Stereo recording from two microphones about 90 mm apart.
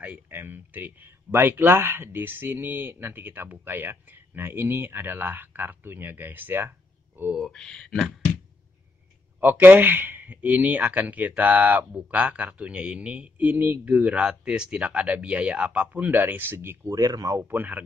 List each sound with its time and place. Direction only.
0.0 s speech: 20° right (ahead or behind)
7.3 s speech: 5° left (ahead or behind)
9.4 s speech: 20° right (ahead or behind)
16.9 s speech: 40° right (ahead or behind)
17.4 s speech: 20° right (ahead or behind)